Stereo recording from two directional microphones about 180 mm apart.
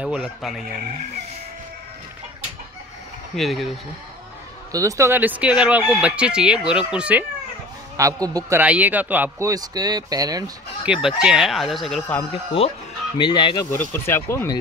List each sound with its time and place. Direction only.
0.0 s speech: centre (ahead or behind)
3.3 s speech: centre (ahead or behind)
4.7 s speech: 15° right (ahead or behind)
8.0 s a man's voice: 20° right (ahead or behind)
10.9 s speech: 5° right (ahead or behind)
12.3 s speech: 30° left (ahead or behind)
13.7 s speech: 10° left (ahead or behind)